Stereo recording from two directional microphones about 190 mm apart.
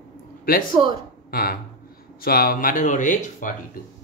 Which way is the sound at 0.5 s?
50° left (ahead or behind).